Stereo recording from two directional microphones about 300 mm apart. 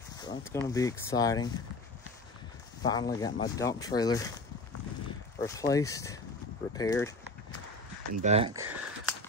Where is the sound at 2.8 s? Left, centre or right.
Centre.